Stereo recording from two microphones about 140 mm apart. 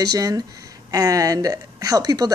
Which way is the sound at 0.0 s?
25° right (ahead or behind).